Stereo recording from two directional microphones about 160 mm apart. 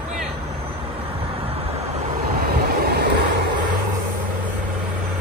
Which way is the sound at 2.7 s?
80° right.